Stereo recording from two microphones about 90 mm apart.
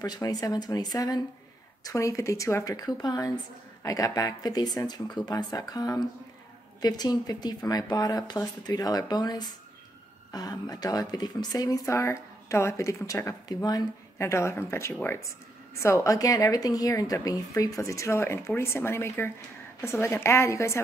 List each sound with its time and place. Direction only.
0.0 s a woman's voice: 45° left (ahead or behind)
14.1 s a woman's voice: 30° left (ahead or behind)